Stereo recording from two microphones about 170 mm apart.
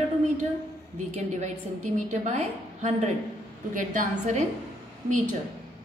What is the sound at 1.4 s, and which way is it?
A woman's voice, 45° right (ahead or behind).